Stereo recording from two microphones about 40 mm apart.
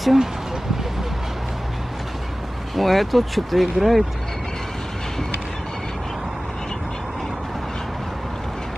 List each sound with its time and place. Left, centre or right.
0.0 s speech: centre
2.7 s speech: centre